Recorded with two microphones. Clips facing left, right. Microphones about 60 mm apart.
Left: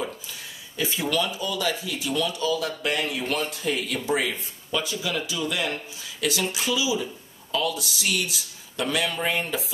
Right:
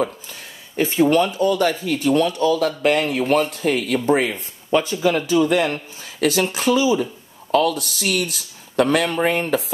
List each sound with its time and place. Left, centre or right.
0.0 s speech: right